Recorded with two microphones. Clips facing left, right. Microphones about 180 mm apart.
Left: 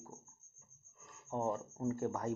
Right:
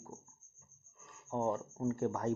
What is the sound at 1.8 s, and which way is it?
Speech, 10° left (ahead or behind).